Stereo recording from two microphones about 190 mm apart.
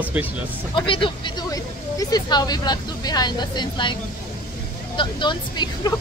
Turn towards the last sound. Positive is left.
turn(degrees=25)  # may be behind; listen again after turning